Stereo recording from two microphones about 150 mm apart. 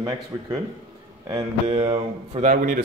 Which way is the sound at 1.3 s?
35° right (ahead or behind).